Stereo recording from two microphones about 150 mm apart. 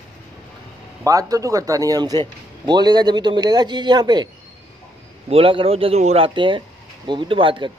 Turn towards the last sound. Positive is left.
turn(degrees=-35)  # may be behind; listen again after turning